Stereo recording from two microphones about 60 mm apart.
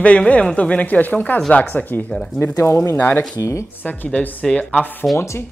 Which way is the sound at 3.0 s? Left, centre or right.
Left.